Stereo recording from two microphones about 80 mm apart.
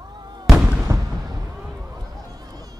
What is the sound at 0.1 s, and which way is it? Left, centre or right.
Fireworks, right.